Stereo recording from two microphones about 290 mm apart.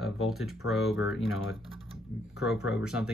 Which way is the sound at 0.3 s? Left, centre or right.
Centre.